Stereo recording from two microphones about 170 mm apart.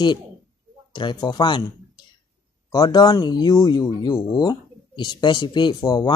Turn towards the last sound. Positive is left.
turn(degrees=25)  # may be behind; listen again after turning